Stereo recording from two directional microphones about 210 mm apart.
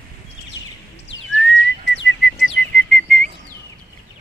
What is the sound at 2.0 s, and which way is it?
Chirp, 60° left (ahead or behind).